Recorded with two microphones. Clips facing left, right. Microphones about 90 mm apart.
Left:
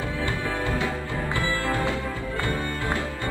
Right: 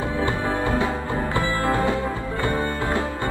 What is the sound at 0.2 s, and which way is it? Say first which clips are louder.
Music: right 5 dB; 25° right (ahead or behind).